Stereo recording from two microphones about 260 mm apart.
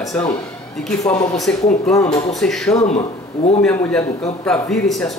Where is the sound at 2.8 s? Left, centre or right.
Left.